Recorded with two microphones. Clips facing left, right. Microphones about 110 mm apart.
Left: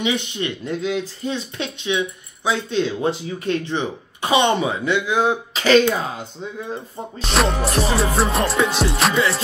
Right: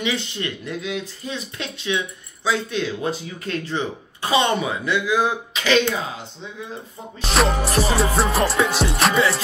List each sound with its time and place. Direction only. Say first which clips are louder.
0.0 s speech: left 3 dB; 20° left (ahead or behind)
0.7 s speech: left 4 dB; 30° left (ahead or behind)
7.2 s music: even; centre (ahead or behind)